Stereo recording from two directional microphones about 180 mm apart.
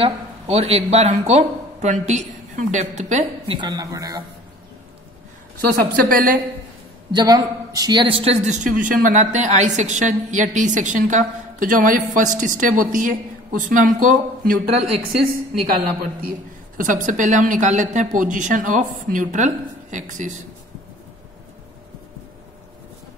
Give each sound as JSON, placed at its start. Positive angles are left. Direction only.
{"t": 0.0, "sound": "speech", "side_deg": -35}
{"t": 3.5, "sound": "a man's voice", "side_deg": -25}
{"t": 5.7, "sound": "a woman's voice", "side_deg": -50}
{"t": 7.2, "sound": "a woman's voice", "side_deg": -20}
{"t": 16.7, "sound": "a woman's voice", "side_deg": -45}